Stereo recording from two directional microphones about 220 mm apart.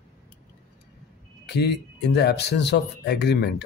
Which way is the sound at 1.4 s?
50° left (ahead or behind).